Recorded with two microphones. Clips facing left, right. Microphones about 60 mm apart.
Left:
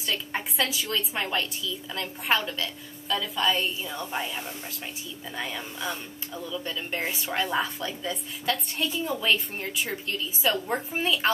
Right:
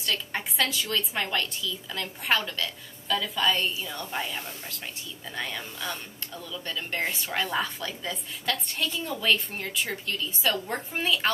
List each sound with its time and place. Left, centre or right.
0.0 s speech: centre